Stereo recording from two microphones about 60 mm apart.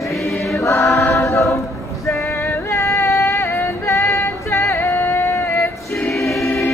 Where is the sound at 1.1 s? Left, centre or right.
Left.